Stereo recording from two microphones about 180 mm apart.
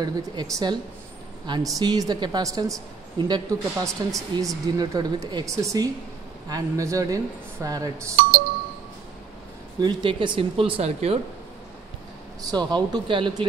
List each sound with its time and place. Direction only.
0.0 s a woman's voice: 20° right (ahead or behind)
9.8 s a woman's voice: 25° right (ahead or behind)
12.4 s a woman's voice: 25° right (ahead or behind)